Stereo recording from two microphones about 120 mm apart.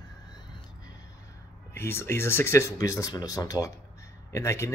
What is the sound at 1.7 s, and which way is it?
Speech, 20° left (ahead or behind).